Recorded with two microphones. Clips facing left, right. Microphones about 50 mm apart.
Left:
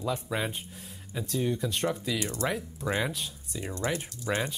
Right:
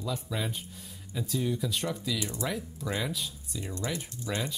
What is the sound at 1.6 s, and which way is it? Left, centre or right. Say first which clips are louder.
Speech: left 2 dB; centre.